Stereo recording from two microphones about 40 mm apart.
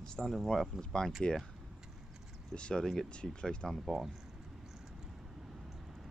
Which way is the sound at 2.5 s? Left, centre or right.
Left.